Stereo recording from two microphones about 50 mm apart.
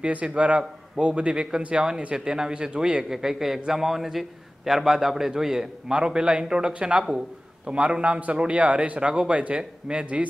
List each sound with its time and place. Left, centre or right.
0.0 s a man's voice: right